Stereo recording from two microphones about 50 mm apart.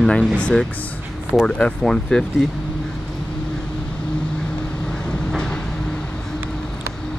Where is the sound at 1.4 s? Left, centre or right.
Centre.